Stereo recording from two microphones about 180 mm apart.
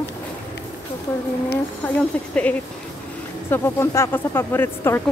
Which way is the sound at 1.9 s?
5° left (ahead or behind).